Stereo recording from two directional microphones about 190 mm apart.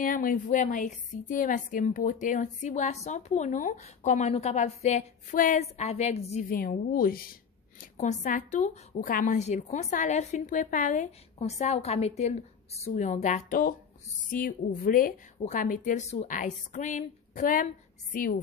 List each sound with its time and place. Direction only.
0.0 s a woman's voice: 45° left (ahead or behind)
6.5 s a woman's voice: 50° left (ahead or behind)
7.8 s a woman's voice: 40° left (ahead or behind)